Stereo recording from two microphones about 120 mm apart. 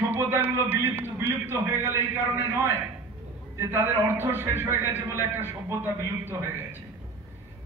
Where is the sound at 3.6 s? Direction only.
20° right (ahead or behind).